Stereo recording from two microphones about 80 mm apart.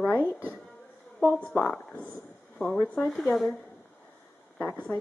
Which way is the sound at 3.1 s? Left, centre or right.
Centre.